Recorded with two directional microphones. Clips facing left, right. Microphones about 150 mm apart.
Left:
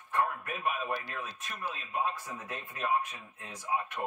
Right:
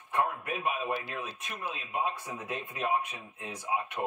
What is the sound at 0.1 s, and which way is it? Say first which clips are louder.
A woman's voice: right 1 dB; 20° right (ahead or behind).